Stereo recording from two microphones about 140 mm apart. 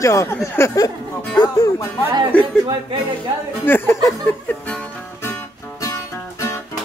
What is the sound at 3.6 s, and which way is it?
Speech, 15° left (ahead or behind).